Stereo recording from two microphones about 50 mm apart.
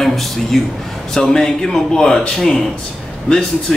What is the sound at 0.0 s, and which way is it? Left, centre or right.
A man's voice, centre.